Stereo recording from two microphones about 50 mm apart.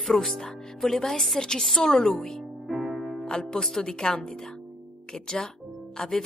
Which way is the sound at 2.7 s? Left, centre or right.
Centre.